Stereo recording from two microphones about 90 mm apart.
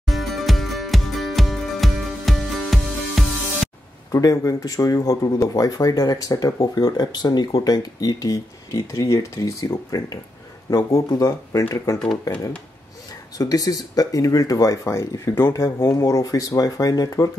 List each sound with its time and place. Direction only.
0.0 s music: centre (ahead or behind)
4.1 s speech: 40° left (ahead or behind)